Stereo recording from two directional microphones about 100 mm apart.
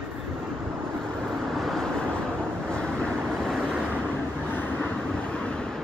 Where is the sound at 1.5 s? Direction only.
Centre (ahead or behind).